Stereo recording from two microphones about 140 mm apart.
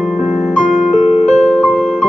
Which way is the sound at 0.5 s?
60° left (ahead or behind).